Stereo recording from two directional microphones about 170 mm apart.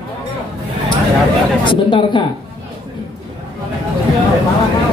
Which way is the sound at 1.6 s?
30° left (ahead or behind).